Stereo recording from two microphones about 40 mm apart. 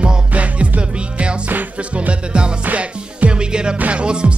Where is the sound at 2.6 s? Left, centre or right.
Right.